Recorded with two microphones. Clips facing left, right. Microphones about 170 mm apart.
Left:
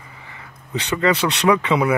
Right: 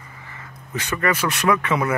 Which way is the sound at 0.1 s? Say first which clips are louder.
Right 1 dB; 15° left (ahead or behind).